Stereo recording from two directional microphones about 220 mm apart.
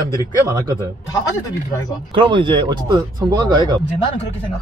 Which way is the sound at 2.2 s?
20° right (ahead or behind).